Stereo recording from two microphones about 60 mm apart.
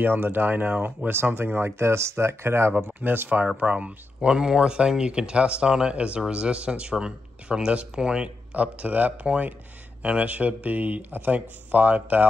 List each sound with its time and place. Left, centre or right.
0.0 s speech: right
3.0 s speech: right; by 8.3 s centre
8.5 s speech: right